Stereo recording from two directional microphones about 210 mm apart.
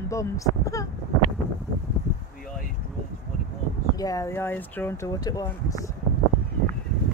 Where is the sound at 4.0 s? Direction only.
15° left (ahead or behind).